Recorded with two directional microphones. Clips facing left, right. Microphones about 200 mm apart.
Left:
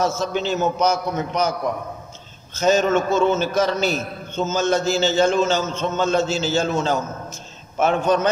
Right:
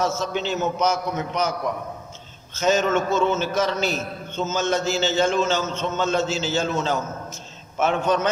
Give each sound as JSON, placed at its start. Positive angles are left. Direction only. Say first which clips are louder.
{"t": 0.0, "sound": "a man's voice", "louder": "left 2 dB", "side_deg": 40}
{"t": 2.6, "sound": "a man's voice", "louder": "left 3 dB", "side_deg": 35}